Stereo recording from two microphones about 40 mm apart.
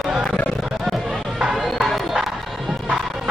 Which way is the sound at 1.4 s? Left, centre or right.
Centre.